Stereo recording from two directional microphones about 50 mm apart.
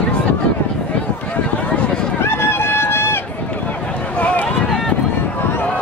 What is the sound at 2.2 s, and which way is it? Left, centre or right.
Run, left.